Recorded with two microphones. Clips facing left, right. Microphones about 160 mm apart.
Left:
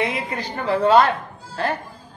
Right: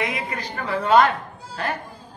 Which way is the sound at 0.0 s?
30° left (ahead or behind).